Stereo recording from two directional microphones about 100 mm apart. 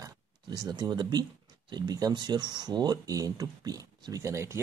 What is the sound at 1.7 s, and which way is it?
Speech, 40° right (ahead or behind).